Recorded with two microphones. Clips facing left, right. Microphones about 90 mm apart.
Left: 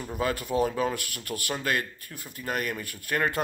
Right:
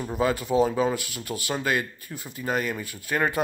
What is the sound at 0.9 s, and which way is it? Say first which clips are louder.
Speech: right 4 dB; 55° left (ahead or behind).